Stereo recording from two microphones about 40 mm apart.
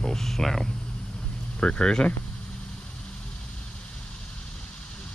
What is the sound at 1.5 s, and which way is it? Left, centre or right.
Speech, left.